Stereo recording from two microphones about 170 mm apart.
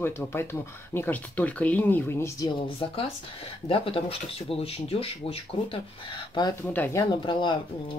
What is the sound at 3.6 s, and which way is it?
Speech, 30° left (ahead or behind).